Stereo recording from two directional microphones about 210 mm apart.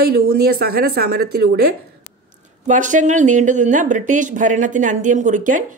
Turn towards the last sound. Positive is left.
turn(degrees=-35)  # may be behind; listen again after turning